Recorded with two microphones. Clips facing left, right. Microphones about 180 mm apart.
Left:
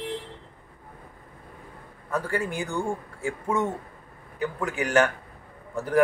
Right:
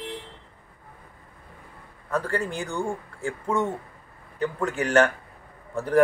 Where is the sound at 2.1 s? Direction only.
5° left (ahead or behind).